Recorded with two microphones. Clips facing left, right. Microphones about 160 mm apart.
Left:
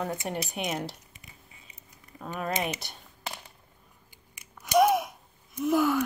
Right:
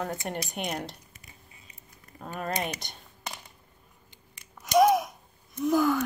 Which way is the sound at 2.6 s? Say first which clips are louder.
Left 2 dB; 5° left (ahead or behind).